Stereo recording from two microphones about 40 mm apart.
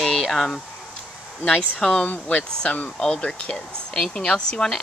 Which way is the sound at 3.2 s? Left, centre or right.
Left.